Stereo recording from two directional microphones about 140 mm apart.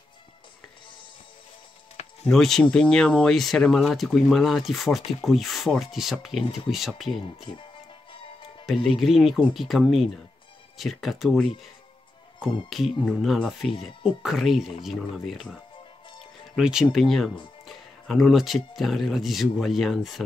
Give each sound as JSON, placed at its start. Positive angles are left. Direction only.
{"t": 2.2, "sound": "speech", "side_deg": 0}
{"t": 8.1, "sound": "music", "side_deg": 35}
{"t": 8.6, "sound": "speech", "side_deg": 0}